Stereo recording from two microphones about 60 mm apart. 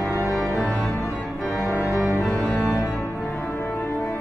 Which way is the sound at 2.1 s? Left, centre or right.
Centre.